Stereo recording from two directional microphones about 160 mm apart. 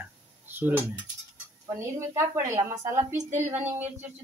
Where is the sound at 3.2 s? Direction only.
50° right (ahead or behind).